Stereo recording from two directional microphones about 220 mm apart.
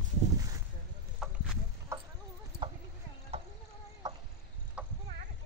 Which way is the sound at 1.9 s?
10° right (ahead or behind).